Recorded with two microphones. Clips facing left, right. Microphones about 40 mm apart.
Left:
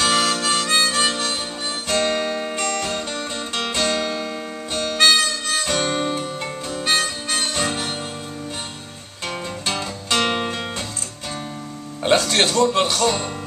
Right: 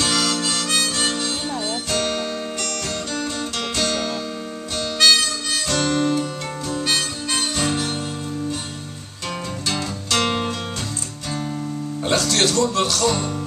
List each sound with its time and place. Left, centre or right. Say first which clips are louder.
0.0 s harmonica: left 2 dB; left
1.9 s music: left 5 dB; left
6.7 s harmonica: left 2 dB; centre
9.7 s music: left 1 dB; left
12.0 s speech: left 2 dB; left